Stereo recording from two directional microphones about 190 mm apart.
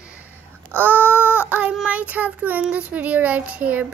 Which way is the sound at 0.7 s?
10° right (ahead or behind).